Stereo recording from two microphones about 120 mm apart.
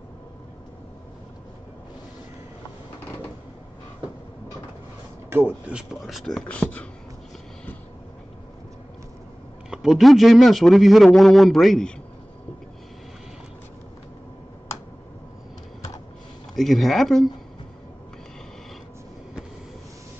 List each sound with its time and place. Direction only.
5.3 s speech: 15° right (ahead or behind)
5.8 s speech: centre (ahead or behind)
9.7 s speech: 5° right (ahead or behind)
16.5 s speech: centre (ahead or behind)